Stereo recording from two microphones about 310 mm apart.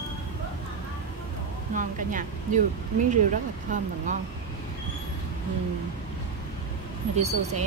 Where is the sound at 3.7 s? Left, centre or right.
Right.